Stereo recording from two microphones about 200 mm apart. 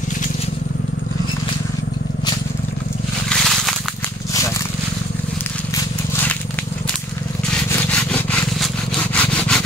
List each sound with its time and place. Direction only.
3.3 s crushing: centre (ahead or behind)
7.7 s sawing: 5° left (ahead or behind)